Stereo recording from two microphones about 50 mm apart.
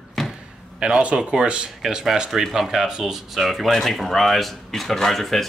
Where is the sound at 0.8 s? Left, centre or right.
Centre.